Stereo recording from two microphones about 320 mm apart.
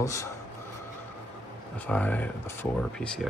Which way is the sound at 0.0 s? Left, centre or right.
Centre.